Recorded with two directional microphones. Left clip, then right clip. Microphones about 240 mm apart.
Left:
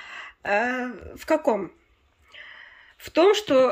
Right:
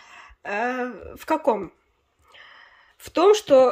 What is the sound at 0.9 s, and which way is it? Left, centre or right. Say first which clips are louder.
Speech: left 1 dB; centre.